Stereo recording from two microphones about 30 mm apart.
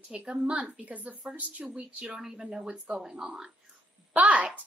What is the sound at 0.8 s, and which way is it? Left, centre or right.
Speech, right.